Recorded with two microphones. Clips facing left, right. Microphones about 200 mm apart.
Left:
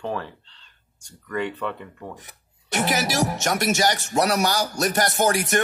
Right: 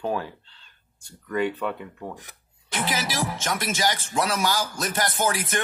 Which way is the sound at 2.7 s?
45° left (ahead or behind).